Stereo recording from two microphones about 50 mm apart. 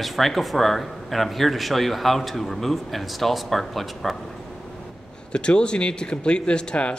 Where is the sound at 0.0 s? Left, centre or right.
Centre.